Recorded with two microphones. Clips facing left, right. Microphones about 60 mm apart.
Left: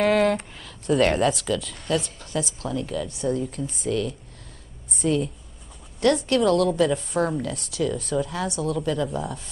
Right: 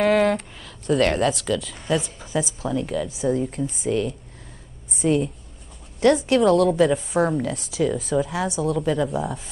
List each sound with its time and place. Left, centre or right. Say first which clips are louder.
0.0 s speech: right 1 dB; centre
3.9 s a woman's voice: right 1 dB; centre